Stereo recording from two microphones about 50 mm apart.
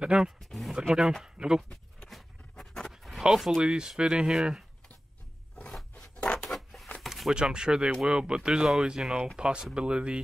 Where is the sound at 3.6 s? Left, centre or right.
Centre.